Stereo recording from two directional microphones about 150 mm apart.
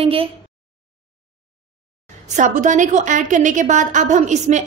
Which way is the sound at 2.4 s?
55° right (ahead or behind).